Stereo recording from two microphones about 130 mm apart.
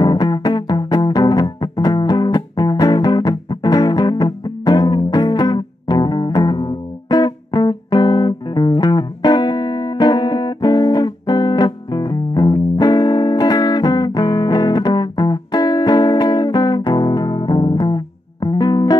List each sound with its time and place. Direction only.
0.0 s music: 30° left (ahead or behind)